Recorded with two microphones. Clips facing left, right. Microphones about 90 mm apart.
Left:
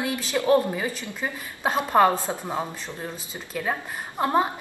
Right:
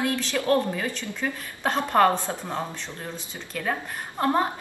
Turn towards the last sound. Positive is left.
turn(degrees=10)  # may be behind; listen again after turning